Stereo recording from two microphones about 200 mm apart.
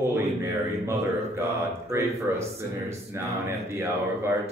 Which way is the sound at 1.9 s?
15° right (ahead or behind).